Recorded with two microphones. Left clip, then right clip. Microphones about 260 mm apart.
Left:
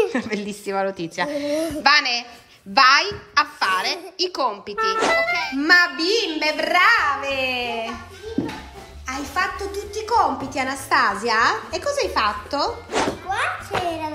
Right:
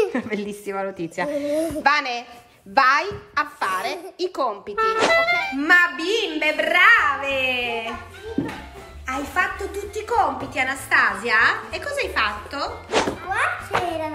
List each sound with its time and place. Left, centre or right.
0.0 s a woman's voice: centre